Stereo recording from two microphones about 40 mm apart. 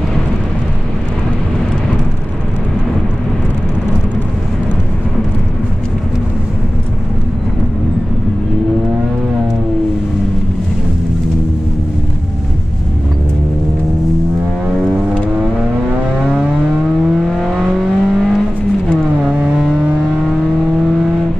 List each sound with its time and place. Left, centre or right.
17.1 s vehicle: centre
19.4 s vehicle: centre